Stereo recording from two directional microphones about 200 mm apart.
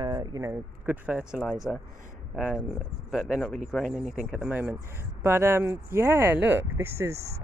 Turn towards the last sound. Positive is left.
turn(degrees=-15)  # may be behind; listen again after turning